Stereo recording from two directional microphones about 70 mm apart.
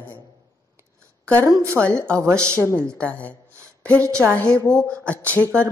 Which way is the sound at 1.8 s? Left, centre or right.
Centre.